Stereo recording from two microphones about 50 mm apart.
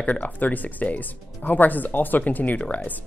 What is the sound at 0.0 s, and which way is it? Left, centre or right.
Speech, left.